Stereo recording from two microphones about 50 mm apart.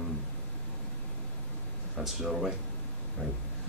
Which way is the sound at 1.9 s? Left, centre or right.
Centre.